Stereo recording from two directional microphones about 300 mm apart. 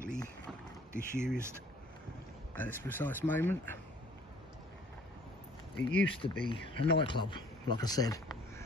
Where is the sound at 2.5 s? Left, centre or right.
Centre.